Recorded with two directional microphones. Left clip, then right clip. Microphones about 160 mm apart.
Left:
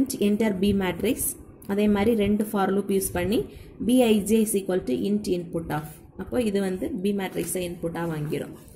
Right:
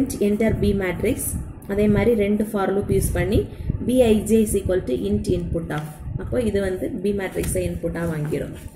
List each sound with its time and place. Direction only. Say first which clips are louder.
0.0 s a woman's voice: right 4 dB; 55° left (ahead or behind)